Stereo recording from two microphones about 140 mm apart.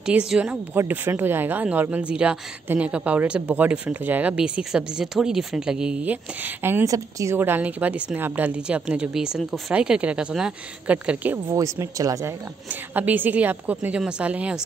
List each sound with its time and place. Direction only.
0.0 s speech: 5° right (ahead or behind)
11.4 s speech: 20° right (ahead or behind)
12.6 s speech: 10° right (ahead or behind)